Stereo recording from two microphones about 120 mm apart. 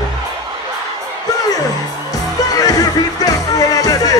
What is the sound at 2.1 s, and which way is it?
Music, 30° left (ahead or behind).